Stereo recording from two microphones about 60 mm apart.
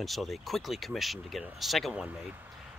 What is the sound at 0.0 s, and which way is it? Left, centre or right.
Speech, centre.